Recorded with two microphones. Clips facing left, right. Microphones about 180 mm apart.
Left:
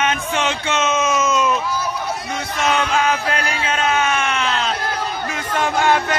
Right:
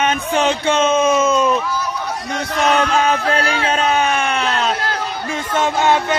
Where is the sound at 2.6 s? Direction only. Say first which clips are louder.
Right 3 dB; 35° right (ahead or behind).